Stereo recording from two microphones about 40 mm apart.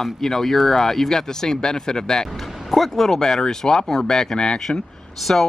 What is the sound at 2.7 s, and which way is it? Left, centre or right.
A man's voice, centre.